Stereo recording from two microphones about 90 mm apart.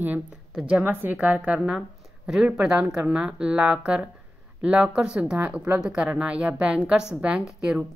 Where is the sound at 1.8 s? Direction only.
5° right (ahead or behind).